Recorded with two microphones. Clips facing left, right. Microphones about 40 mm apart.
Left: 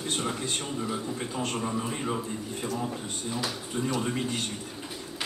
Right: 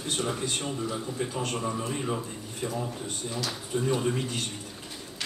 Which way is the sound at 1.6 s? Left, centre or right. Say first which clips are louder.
Even; centre.